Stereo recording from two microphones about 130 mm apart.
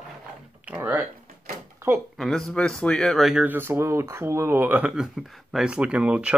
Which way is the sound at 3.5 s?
15° right (ahead or behind).